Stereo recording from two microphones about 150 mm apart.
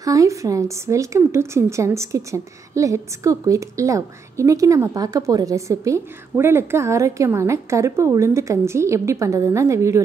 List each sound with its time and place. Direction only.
0.0 s a woman's voice: 20° right (ahead or behind)